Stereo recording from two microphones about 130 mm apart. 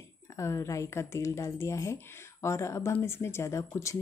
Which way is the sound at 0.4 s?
20° left (ahead or behind).